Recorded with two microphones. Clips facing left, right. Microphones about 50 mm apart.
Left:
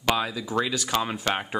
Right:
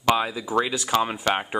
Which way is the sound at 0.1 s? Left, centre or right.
Centre.